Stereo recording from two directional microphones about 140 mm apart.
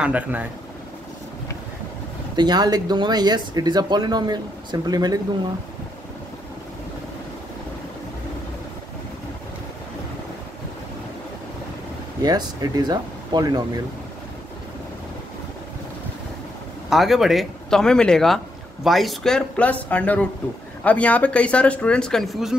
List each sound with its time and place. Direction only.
0.0 s speech: 10° right (ahead or behind)
2.3 s speech: 30° right (ahead or behind)
12.2 s speech: 30° right (ahead or behind)
16.9 s speech: centre (ahead or behind)